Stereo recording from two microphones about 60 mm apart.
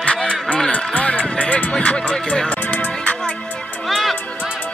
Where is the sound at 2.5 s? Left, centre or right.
Left.